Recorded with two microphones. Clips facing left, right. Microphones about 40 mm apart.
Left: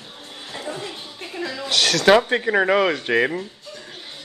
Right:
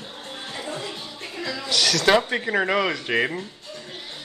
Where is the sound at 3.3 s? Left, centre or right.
Centre.